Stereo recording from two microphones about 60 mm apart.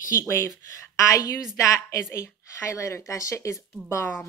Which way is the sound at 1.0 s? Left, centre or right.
Left.